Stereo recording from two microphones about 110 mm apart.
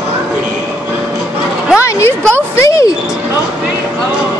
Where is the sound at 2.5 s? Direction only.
30° left (ahead or behind).